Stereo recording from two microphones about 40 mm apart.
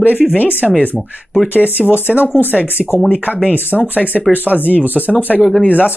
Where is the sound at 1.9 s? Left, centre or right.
Left.